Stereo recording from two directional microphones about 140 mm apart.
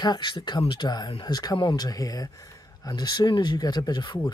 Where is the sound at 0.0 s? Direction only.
30° left (ahead or behind).